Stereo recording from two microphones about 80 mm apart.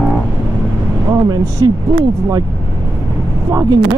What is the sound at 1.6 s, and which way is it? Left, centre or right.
Speech, right.